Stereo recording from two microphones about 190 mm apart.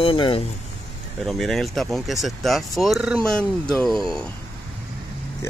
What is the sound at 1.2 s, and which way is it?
Speech, centre (ahead or behind).